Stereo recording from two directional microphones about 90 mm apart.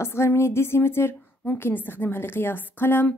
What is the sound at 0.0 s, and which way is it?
A woman's voice, 30° left (ahead or behind).